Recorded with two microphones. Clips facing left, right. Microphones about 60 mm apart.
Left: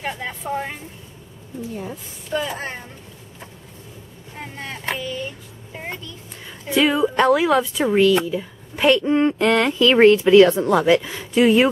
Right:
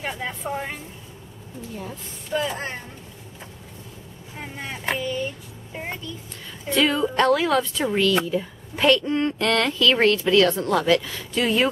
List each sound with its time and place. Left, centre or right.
0.0 s speech: centre
2.3 s speech: centre
4.4 s a child's voice: centre
6.7 s speech: centre
8.2 s speech: centre
8.8 s speech: centre